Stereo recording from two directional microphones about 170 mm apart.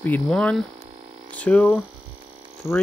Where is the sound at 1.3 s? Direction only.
10° left (ahead or behind).